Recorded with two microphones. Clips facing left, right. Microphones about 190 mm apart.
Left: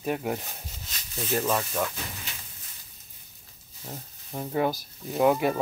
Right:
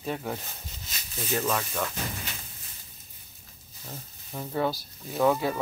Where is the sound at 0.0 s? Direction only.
15° left (ahead or behind).